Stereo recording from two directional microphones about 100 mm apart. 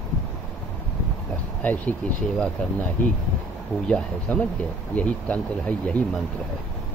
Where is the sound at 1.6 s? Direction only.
15° left (ahead or behind).